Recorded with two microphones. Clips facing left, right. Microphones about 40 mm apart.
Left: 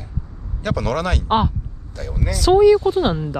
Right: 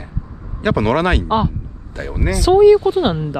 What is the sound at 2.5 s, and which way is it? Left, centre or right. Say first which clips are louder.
Speech: right 3 dB; right.